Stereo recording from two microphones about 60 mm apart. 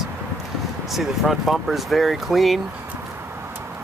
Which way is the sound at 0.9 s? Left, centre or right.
Centre.